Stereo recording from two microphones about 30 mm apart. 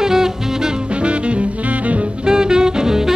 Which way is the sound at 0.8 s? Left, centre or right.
Right.